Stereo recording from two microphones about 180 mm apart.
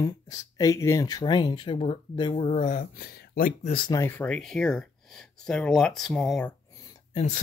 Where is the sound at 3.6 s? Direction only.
30° left (ahead or behind).